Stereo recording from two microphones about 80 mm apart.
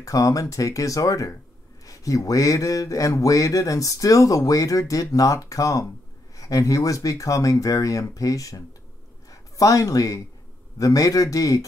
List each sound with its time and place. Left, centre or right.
0.0 s speech: left